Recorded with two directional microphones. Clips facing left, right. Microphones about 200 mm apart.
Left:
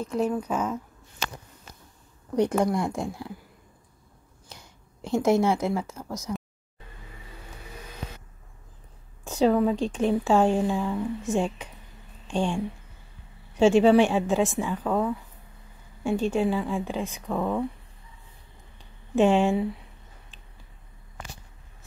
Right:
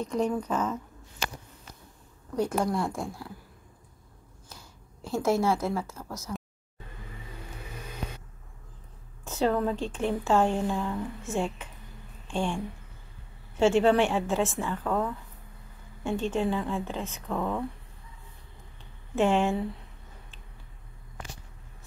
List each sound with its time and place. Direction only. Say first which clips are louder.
0.0 s speech: left 1 dB; 5° left (ahead or behind)
2.6 s speech: left 3 dB; 15° left (ahead or behind)
4.5 s speech: left 2 dB; 20° left (ahead or behind)
9.2 s speech: left 5 dB; 15° left (ahead or behind)
19.1 s speech: left 4 dB; 15° left (ahead or behind)